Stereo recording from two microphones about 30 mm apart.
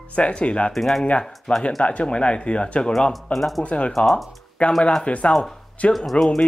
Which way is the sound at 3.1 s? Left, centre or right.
Centre.